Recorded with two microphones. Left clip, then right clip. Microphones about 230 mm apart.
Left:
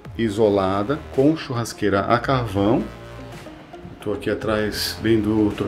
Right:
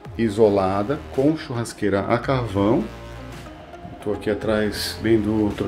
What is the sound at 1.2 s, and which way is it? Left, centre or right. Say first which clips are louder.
Speech: left 2 dB; centre.